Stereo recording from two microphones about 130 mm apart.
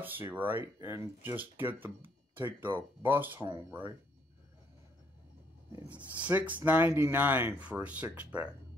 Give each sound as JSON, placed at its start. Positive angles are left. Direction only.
{"t": 0.0, "sound": "speech", "side_deg": -15}
{"t": 5.7, "sound": "speech", "side_deg": -15}